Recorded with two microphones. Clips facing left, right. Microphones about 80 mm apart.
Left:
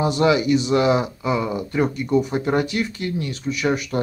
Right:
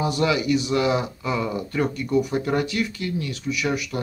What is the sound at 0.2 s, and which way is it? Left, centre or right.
Speech, left.